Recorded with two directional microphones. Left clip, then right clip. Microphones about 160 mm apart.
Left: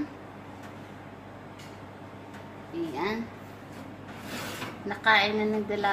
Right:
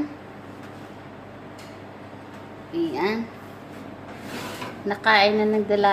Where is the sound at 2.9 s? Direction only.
35° right (ahead or behind).